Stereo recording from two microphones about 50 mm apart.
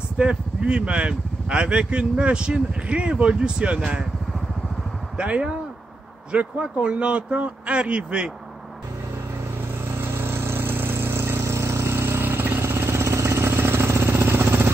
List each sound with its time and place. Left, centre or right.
0.2 s speech: right
5.1 s speech: right
9.8 s vehicle: right